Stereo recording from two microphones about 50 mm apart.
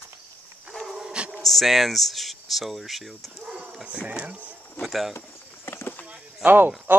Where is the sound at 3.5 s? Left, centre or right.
Right.